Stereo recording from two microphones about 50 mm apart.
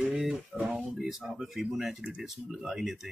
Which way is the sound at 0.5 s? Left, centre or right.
Right.